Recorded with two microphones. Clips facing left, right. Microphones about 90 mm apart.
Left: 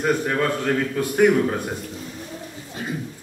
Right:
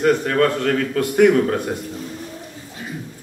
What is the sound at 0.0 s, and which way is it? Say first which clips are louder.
A man's voice: right 5 dB; 10° left (ahead or behind).